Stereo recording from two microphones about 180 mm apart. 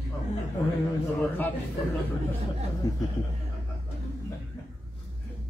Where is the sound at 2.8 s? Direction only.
20° left (ahead or behind).